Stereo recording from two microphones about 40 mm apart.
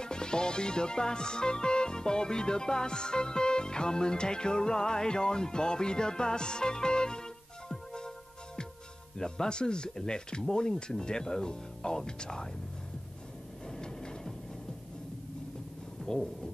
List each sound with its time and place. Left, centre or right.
0.0 s music: centre
9.2 s music: centre
10.5 s speech: centre
13.7 s a sound: centre
16.1 s speech: centre